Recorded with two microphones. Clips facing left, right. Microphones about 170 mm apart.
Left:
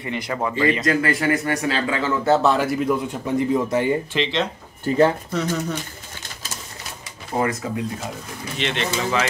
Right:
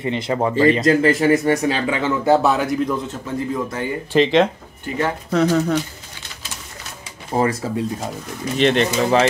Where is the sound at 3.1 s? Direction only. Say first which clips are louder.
Left 3 dB; 20° left (ahead or behind).